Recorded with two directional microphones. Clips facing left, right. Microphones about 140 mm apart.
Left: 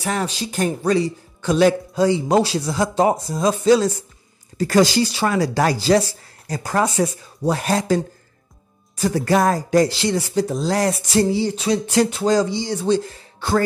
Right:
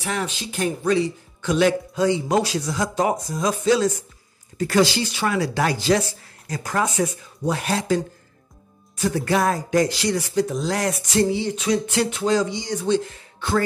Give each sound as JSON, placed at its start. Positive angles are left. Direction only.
{"t": 0.0, "sound": "speech", "side_deg": 40}